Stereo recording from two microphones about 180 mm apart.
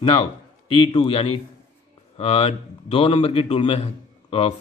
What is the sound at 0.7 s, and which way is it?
A man's voice, 30° left (ahead or behind).